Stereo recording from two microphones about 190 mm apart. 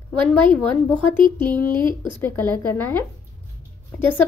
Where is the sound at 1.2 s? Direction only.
25° right (ahead or behind).